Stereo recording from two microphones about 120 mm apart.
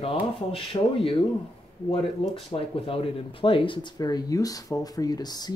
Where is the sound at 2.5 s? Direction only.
50° left (ahead or behind); by 5.6 s 35° left (ahead or behind).